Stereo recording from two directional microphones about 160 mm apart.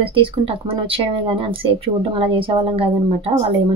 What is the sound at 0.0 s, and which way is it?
Speech, 35° right (ahead or behind).